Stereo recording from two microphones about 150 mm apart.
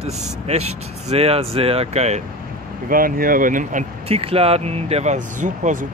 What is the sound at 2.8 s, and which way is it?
Speech, 70° right (ahead or behind).